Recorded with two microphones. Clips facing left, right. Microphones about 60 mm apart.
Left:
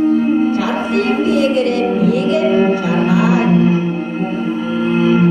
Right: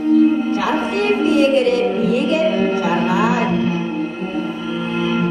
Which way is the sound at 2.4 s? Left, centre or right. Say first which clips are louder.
Left 3 dB; centre.